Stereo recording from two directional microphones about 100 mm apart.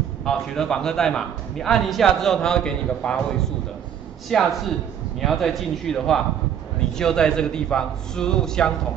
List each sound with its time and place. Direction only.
0.2 s a man's voice: 5° left (ahead or behind)